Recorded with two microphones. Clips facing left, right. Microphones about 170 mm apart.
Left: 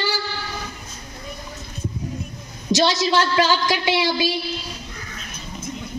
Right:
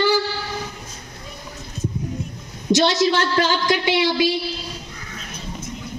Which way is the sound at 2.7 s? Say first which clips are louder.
Right 1 dB; 55° right (ahead or behind).